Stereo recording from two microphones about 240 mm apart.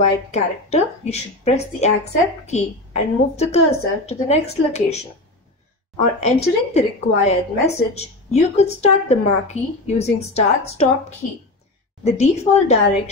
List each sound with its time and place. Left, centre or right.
0.0 s a woman's voice: left
12.0 s a woman's voice: left